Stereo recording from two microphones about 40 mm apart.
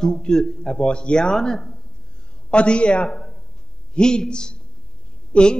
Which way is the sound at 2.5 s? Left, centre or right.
Left.